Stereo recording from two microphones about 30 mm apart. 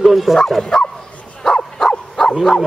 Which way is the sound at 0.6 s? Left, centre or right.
Left.